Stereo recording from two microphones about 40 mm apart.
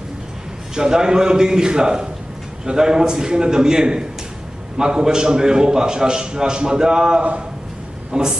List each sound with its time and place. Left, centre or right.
0.7 s a man's voice: centre